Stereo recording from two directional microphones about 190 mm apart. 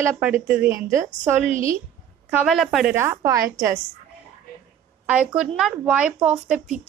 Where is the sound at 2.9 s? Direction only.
15° right (ahead or behind).